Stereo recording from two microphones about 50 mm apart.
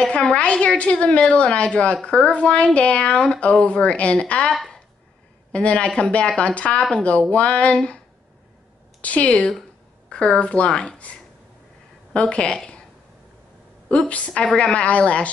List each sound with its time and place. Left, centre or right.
0.0 s a woman's voice: centre
4.6 s a sound: centre
5.5 s a woman's voice: left
9.0 s a woman's voice: left
12.1 s speech: left
13.8 s a woman's voice: left
14.4 s a woman's voice: centre
14.7 s a woman's voice: left